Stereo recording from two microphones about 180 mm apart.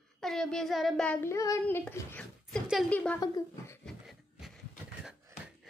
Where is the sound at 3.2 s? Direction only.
20° left (ahead or behind).